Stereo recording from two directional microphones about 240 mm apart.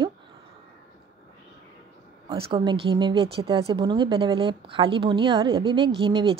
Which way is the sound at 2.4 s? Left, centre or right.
Centre.